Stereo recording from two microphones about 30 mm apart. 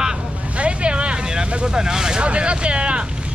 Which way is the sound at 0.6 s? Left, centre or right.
Right.